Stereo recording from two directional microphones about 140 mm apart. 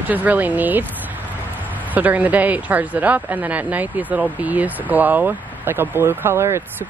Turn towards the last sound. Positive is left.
turn(degrees=-20)  # may be behind; listen again after turning